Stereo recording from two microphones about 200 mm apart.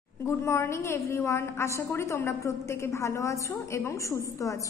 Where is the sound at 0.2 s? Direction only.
15° left (ahead or behind).